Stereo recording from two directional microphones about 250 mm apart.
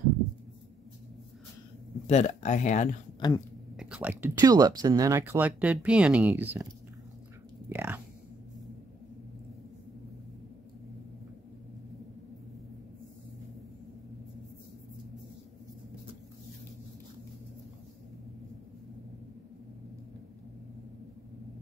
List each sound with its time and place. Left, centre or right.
2.0 s speech: left
3.2 s speech: centre
3.7 s speech: centre
7.7 s a sound: centre